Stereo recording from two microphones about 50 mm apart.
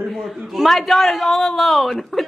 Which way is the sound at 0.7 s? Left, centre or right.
Centre.